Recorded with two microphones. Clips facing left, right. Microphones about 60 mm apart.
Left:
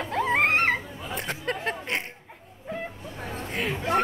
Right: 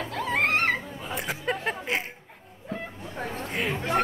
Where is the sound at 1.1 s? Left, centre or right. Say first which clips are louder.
Right 1 dB; centre.